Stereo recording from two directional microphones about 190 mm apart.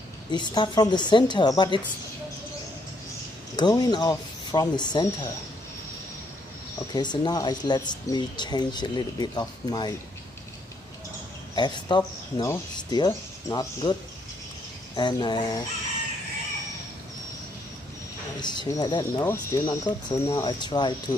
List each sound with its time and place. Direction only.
0.3 s speech: 25° left (ahead or behind)
3.5 s speech: 20° left (ahead or behind)
6.9 s speech: 25° left (ahead or behind)
11.5 s speech: 25° left (ahead or behind)
15.0 s speech: 25° left (ahead or behind)
18.4 s speech: 25° left (ahead or behind)